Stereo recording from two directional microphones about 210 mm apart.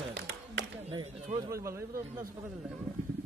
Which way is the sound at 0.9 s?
15° right (ahead or behind).